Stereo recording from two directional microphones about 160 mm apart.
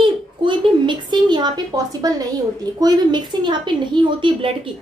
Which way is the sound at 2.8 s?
25° right (ahead or behind).